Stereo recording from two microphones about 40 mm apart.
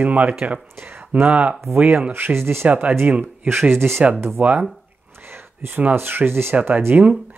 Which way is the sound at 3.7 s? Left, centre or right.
Right.